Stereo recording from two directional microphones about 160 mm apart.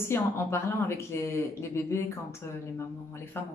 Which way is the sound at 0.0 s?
15° left (ahead or behind).